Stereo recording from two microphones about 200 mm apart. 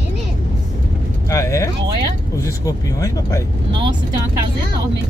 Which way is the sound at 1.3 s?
15° left (ahead or behind).